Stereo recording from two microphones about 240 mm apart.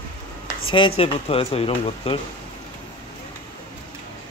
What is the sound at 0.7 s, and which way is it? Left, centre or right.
Speech, left.